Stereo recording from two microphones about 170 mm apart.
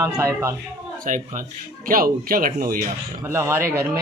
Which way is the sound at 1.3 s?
55° right (ahead or behind).